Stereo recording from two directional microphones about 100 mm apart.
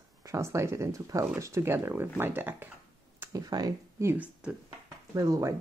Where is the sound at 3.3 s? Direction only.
40° right (ahead or behind).